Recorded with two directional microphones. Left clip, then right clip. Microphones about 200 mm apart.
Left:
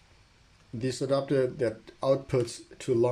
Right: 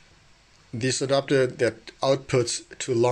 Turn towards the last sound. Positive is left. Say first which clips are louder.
# right 3 dB
turn(degrees=10)  # may be behind; listen again after turning